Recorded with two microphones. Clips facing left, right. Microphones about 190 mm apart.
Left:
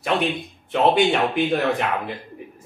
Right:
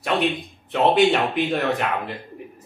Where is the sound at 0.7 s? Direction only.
Centre (ahead or behind).